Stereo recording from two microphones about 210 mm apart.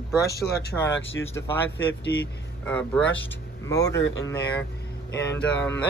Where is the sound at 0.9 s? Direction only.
60° left (ahead or behind).